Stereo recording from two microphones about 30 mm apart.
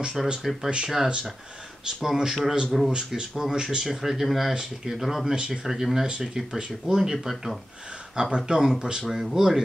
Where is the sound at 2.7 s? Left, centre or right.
Centre.